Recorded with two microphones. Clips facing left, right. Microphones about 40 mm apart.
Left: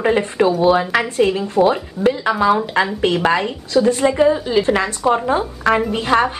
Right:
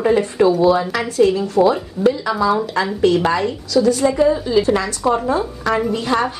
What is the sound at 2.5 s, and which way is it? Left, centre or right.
A woman's voice, left.